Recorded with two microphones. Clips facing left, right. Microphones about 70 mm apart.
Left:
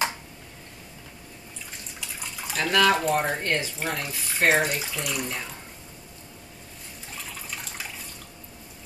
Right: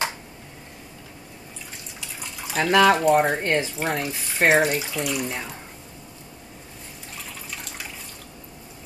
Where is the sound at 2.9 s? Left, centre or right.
Centre.